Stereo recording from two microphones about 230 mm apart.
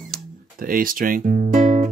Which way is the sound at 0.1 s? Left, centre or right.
Right.